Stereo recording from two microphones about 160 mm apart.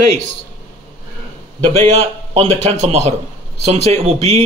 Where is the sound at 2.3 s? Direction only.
40° right (ahead or behind).